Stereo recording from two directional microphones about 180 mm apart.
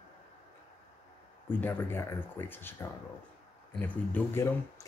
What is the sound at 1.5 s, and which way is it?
A man's voice, 10° left (ahead or behind).